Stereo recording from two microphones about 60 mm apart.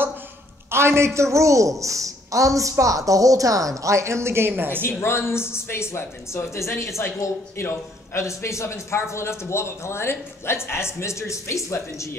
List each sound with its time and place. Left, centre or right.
0.7 s a man's voice: right
4.8 s speech: left